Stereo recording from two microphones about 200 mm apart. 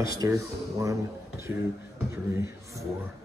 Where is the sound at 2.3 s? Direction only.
15° right (ahead or behind).